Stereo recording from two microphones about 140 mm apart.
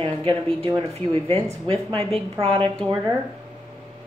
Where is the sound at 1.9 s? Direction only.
45° right (ahead or behind).